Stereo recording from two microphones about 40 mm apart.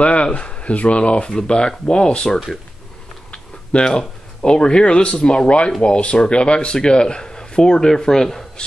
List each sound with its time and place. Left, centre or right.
0.0 s speech: left
3.7 s speech: left; by 8.5 s centre